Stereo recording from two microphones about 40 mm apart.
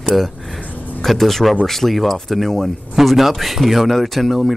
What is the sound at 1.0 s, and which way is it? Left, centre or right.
Speech, centre.